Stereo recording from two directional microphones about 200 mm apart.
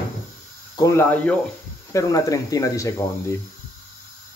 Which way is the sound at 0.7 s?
15° left (ahead or behind).